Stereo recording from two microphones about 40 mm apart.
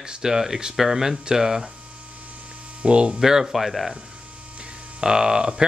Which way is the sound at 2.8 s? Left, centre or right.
Right.